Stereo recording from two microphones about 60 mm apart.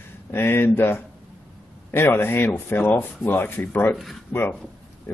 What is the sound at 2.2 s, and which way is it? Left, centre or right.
Speech, left.